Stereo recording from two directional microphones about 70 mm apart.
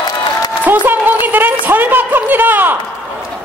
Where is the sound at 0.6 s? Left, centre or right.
Right.